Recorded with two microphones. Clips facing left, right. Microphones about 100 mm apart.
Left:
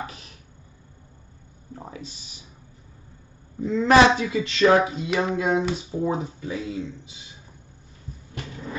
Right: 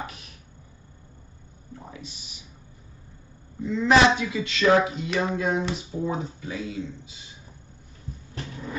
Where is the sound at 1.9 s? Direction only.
40° left (ahead or behind).